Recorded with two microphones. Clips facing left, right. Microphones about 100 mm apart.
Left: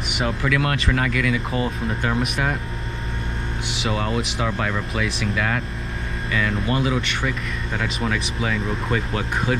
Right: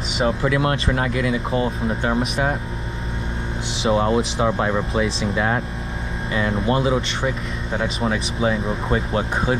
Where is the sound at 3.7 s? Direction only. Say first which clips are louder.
Right 6 dB; 30° right (ahead or behind).